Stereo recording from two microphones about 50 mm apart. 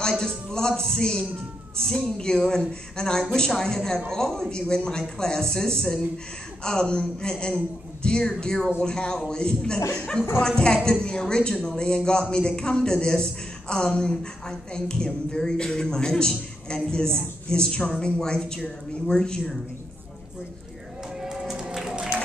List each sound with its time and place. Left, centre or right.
0.2 s a man's voice: centre
21.2 s music: centre